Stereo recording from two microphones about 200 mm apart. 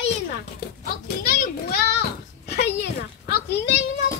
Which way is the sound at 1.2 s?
45° left (ahead or behind).